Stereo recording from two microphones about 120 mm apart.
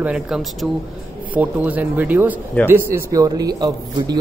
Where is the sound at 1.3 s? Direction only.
15° right (ahead or behind); by 4.2 s 35° right (ahead or behind).